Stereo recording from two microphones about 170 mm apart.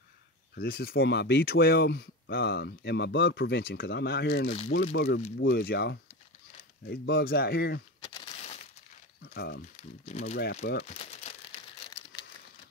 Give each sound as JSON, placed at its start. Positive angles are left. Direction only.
{"t": 0.6, "sound": "speech", "side_deg": 65}
{"t": 5.4, "sound": "speech", "side_deg": 70}
{"t": 8.4, "sound": "a sound", "side_deg": 40}
{"t": 9.2, "sound": "a sound", "side_deg": 80}
{"t": 10.0, "sound": "speech", "side_deg": 45}
{"t": 10.4, "sound": "speech", "side_deg": 80}
{"t": 10.9, "sound": "crumpling", "side_deg": 40}